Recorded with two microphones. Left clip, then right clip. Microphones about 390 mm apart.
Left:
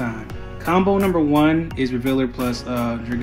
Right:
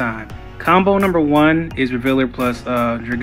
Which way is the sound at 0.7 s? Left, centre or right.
Centre.